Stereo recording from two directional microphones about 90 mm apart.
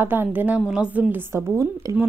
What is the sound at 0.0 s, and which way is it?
A woman's voice, 25° right (ahead or behind).